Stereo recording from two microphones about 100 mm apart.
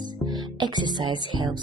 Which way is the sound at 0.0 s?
45° right (ahead or behind).